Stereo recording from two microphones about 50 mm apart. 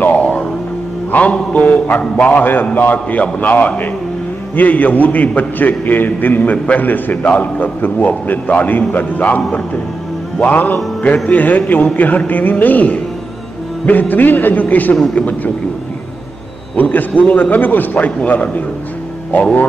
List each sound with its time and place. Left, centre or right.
0.1 s music: centre
1.1 s a man's voice: left
10.4 s a man's voice: left
16.7 s a man's voice: left